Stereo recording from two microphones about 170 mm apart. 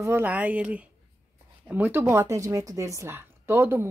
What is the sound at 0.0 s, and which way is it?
A woman's voice, 10° right (ahead or behind).